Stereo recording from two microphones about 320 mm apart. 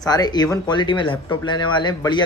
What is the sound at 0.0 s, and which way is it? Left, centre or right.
Speech, centre.